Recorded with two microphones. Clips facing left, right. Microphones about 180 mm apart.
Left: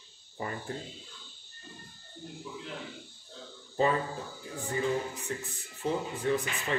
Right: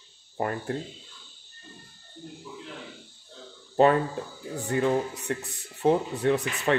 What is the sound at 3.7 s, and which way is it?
Speech, 65° right (ahead or behind).